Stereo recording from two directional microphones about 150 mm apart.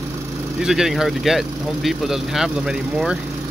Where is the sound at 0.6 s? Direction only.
Centre (ahead or behind).